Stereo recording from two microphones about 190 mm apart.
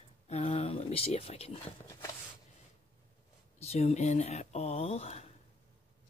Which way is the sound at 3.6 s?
35° left (ahead or behind).